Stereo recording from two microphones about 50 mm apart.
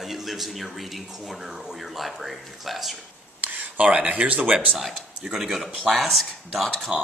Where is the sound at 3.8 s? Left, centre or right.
Right.